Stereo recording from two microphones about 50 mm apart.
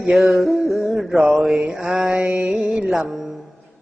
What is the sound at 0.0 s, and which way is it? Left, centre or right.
Music, right.